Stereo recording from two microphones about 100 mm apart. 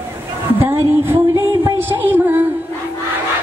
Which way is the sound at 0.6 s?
20° right (ahead or behind).